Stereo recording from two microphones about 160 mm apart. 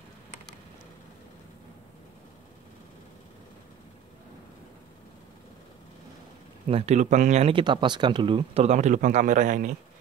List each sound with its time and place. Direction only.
6.7 s speech: 45° right (ahead or behind)